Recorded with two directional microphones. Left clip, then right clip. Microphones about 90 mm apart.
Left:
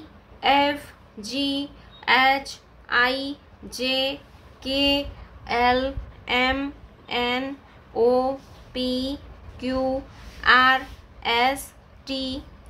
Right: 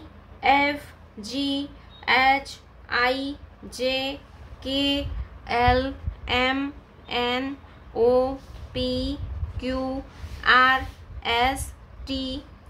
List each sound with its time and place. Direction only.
0.4 s a sound: 35° left (ahead or behind)
1.2 s a woman's voice: 25° left (ahead or behind)
5.4 s a woman's voice: centre (ahead or behind)